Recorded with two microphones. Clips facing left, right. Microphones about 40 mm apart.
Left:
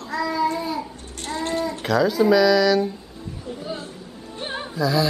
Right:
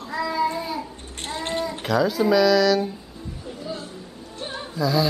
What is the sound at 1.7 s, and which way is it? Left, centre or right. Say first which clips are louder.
Speech: left 1 dB; centre.